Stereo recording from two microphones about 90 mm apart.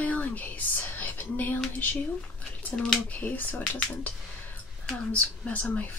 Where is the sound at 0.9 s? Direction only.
20° left (ahead or behind).